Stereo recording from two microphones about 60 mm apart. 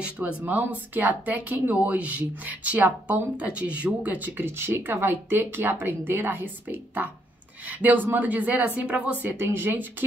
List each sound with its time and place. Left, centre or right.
0.2 s speech: right
9.4 s speech: right